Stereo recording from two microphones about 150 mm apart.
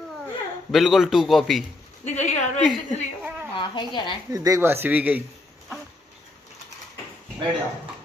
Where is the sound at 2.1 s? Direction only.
50° left (ahead or behind).